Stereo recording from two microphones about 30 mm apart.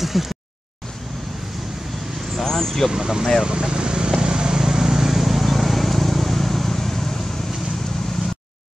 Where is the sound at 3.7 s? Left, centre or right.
Right; by 7.5 s centre.